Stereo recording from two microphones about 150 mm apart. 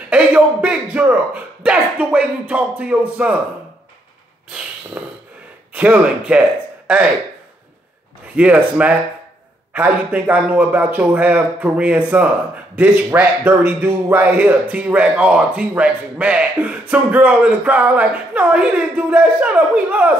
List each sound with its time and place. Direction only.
0.1 s a sound: 10° right (ahead or behind)
5.0 s a man's voice: 10° right (ahead or behind)
8.4 s a man's voice: 10° right (ahead or behind)